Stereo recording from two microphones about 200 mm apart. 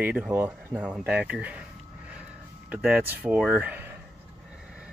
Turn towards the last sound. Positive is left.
turn(degrees=-10)  # may be behind; listen again after turning